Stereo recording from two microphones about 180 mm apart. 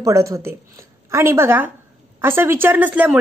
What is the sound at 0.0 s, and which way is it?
A woman's voice, 15° right (ahead or behind).